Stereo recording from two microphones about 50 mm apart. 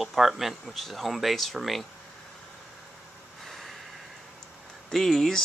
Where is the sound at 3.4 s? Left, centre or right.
Centre.